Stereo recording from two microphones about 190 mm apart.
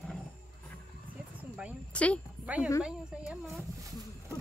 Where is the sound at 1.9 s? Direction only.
5° left (ahead or behind).